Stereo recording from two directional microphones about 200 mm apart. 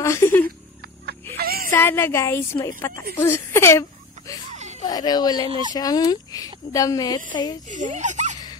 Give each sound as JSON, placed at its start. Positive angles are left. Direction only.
{"t": 0.0, "sound": "speech", "side_deg": 15}
{"t": 1.4, "sound": "a sound", "side_deg": -50}
{"t": 1.7, "sound": "a woman's voice", "side_deg": 10}
{"t": 4.8, "sound": "speech", "side_deg": 20}
{"t": 7.7, "sound": "speech", "side_deg": -40}